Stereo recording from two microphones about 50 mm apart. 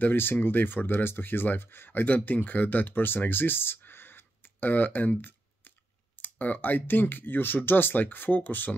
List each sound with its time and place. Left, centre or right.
0.0 s speech: left
1.9 s speech: left
6.1 s speech: left